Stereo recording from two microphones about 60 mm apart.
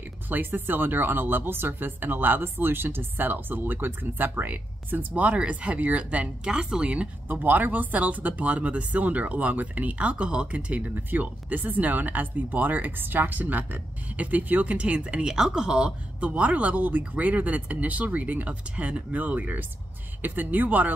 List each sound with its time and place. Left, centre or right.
0.3 s speech: right
7.2 s speech: right; by 16.3 s centre
16.3 s speech: right